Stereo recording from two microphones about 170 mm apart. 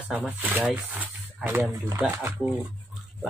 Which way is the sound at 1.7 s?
20° right (ahead or behind).